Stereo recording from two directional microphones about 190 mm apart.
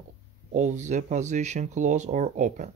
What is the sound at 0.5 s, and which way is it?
Speech, 40° right (ahead or behind).